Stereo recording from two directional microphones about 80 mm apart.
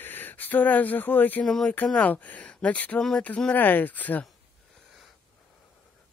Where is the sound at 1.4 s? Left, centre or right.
Centre.